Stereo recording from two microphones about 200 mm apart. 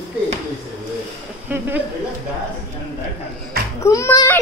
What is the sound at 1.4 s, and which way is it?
Speech, 10° right (ahead or behind).